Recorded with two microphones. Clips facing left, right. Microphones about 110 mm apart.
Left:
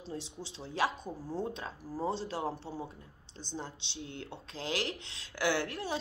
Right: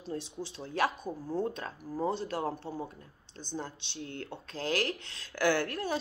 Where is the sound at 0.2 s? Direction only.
25° left (ahead or behind).